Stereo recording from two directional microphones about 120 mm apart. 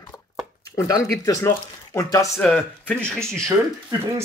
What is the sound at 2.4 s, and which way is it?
Speech, 10° left (ahead or behind).